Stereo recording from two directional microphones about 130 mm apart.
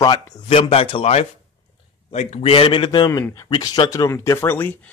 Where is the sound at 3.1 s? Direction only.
25° left (ahead or behind).